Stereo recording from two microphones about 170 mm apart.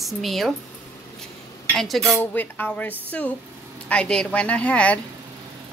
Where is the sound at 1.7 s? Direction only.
Centre (ahead or behind).